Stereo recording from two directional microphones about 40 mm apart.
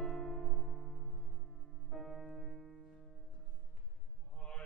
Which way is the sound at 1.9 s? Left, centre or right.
Centre.